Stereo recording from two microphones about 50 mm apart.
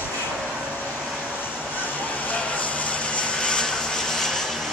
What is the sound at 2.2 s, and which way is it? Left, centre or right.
Vehicle, left.